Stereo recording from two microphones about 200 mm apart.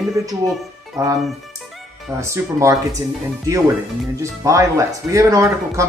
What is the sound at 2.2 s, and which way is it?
Speech, 15° right (ahead or behind).